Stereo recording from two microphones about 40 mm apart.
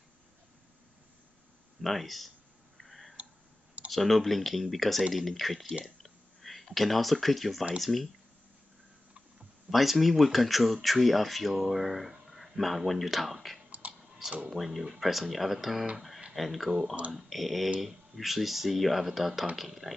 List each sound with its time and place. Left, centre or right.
1.8 s speech: centre
2.8 s clicking: centre
3.9 s speech: centre
6.0 s clicking: centre
7.8 s speech: centre
9.7 s speech: centre
13.8 s clicking: right
14.5 s speech: centre